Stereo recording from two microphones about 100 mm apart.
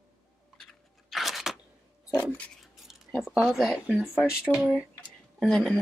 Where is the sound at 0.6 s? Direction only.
Centre (ahead or behind).